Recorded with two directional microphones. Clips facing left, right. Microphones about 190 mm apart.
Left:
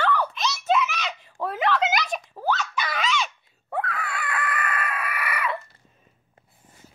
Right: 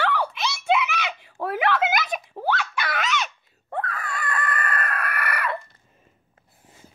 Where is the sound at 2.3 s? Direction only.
20° right (ahead or behind).